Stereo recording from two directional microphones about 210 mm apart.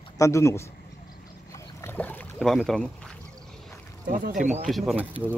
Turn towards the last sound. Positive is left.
turn(degrees=0)  # may be behind; listen again after turning